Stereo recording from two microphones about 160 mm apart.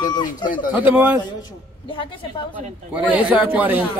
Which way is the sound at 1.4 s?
30° left (ahead or behind).